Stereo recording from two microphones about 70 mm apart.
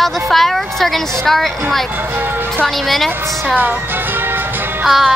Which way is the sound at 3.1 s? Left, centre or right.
Right.